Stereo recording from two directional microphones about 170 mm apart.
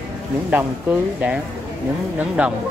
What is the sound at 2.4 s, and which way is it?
Speech, 10° right (ahead or behind).